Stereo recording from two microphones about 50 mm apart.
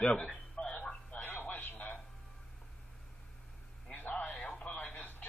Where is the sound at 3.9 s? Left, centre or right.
Left.